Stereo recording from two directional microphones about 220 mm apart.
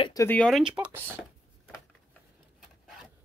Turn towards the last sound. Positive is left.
turn(degrees=-5)  # may be behind; listen again after turning